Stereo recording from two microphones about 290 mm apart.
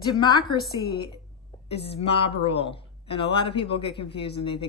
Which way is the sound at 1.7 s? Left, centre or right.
Left.